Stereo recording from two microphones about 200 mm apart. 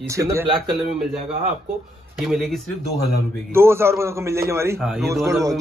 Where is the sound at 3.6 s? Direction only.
10° right (ahead or behind).